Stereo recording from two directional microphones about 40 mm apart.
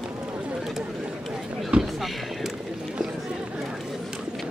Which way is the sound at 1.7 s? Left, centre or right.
Right.